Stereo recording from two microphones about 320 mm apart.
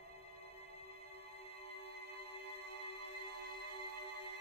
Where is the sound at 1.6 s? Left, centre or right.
Centre.